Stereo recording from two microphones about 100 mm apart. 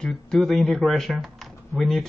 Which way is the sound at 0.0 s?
Centre (ahead or behind).